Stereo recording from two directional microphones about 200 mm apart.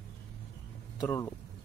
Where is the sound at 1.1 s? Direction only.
10° left (ahead or behind).